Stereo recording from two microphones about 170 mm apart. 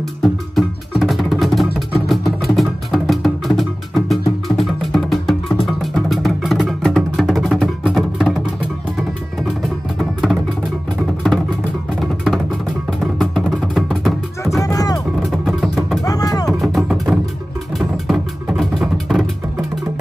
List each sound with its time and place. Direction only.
0.2 s music: centre (ahead or behind)
13.0 s music: centre (ahead or behind)
14.6 s music: 20° left (ahead or behind)
15.4 s music: centre (ahead or behind)
16.0 s a sound: 20° left (ahead or behind)
16.6 s music: centre (ahead or behind)